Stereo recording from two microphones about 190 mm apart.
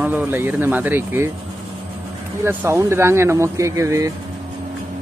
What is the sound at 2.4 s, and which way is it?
Speech, 15° right (ahead or behind).